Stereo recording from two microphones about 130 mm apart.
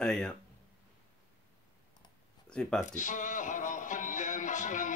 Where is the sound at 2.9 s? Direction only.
75° left (ahead or behind).